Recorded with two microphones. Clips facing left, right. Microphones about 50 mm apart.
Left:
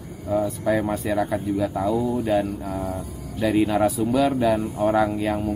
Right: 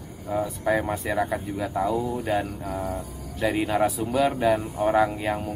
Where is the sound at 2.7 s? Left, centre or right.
Right.